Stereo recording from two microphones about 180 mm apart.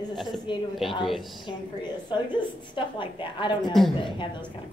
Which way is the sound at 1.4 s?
25° left (ahead or behind).